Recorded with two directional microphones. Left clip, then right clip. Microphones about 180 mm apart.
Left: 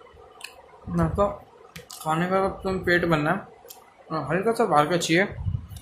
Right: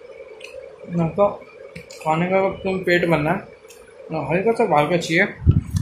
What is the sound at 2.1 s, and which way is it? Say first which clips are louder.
Speech: right 5 dB; 15° left (ahead or behind).